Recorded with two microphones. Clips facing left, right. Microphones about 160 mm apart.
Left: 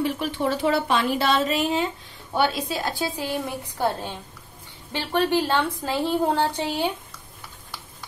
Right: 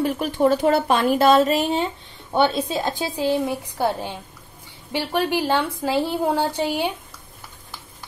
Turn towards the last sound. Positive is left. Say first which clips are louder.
# right 2 dB
turn(degrees=-15)  # may be behind; listen again after turning